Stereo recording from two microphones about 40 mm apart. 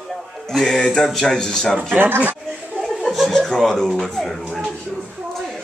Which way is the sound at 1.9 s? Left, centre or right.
Right.